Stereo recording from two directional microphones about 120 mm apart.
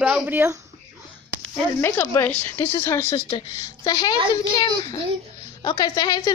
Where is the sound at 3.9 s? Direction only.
35° left (ahead or behind).